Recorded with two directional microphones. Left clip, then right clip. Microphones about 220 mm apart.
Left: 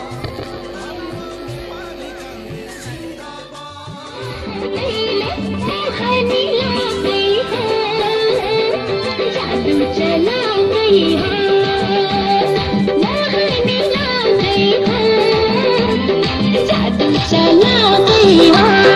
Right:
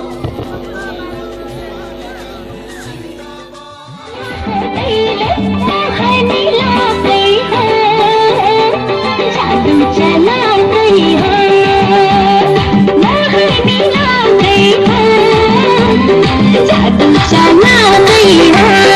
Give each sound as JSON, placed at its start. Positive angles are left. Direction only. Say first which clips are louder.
{"t": 5.7, "sound": "music", "louder": "right 6 dB", "side_deg": -50}